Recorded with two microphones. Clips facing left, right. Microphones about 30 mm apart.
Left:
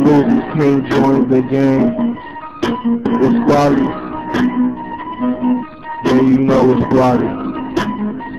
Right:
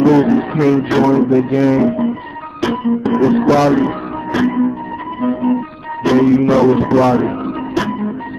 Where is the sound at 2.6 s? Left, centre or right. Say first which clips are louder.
Even; centre.